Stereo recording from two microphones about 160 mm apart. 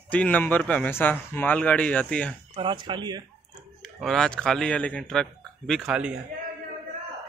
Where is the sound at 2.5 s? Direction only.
30° right (ahead or behind).